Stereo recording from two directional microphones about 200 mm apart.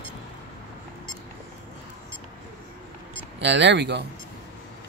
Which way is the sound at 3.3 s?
65° right (ahead or behind).